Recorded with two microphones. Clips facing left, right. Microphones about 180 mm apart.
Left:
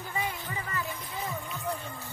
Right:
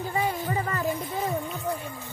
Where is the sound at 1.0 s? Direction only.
50° right (ahead or behind).